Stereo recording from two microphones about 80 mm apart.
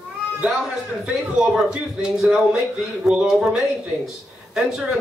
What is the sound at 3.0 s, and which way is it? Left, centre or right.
Speech, centre.